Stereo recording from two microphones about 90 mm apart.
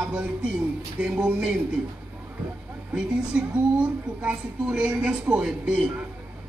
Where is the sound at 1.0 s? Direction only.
10° right (ahead or behind).